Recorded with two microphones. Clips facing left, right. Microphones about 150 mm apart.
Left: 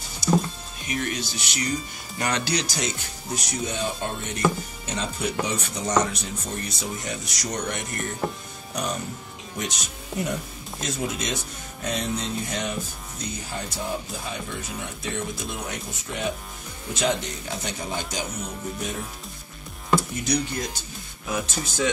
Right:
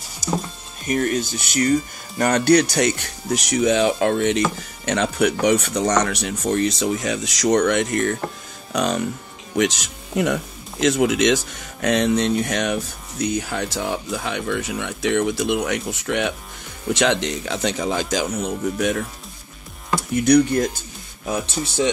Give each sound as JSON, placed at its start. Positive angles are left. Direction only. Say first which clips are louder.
{"t": 0.8, "sound": "speech", "louder": "right 8 dB", "side_deg": -45}
{"t": 4.8, "sound": "speech", "louder": "right 10 dB", "side_deg": -70}
{"t": 16.9, "sound": "speech", "louder": "right 6 dB", "side_deg": -90}
{"t": 20.2, "sound": "speech", "louder": "right 14 dB", "side_deg": -60}
{"t": 21.3, "sound": "speech", "louder": "right 4 dB", "side_deg": -30}